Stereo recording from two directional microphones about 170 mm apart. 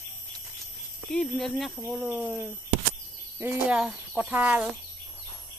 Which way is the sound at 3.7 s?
5° right (ahead or behind).